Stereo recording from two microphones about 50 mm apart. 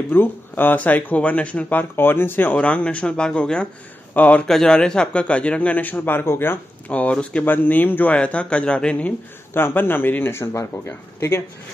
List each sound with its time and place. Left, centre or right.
0.1 s a man's voice: left
1.7 s speech: left
2.5 s a man's voice: left
4.1 s a man's voice: left
4.5 s a man's voice: centre; by 6.6 s left
6.9 s a man's voice: left
7.4 s speech: left
8.1 s a man's voice: left
9.5 s speech: left
10.3 s speech: left